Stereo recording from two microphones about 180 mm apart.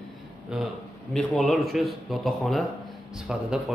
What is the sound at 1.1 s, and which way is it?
A man's voice, centre (ahead or behind).